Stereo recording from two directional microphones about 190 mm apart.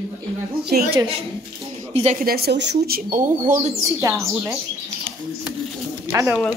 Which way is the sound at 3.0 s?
45° right (ahead or behind).